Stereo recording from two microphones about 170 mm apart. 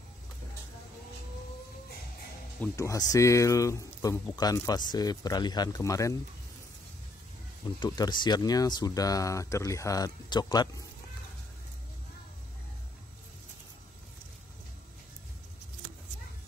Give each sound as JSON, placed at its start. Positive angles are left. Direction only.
{"t": 2.7, "sound": "speech", "side_deg": 20}
{"t": 7.6, "sound": "speech", "side_deg": 25}